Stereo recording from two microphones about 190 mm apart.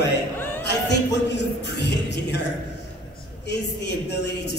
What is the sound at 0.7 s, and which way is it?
Speech, 60° left (ahead or behind).